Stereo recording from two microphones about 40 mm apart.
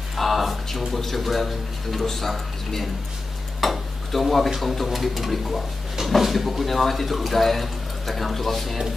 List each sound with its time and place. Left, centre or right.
0.1 s speech: centre
3.6 s a sound: centre
4.5 s speech: centre